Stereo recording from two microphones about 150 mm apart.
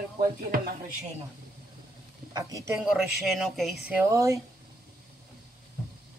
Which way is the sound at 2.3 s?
20° right (ahead or behind).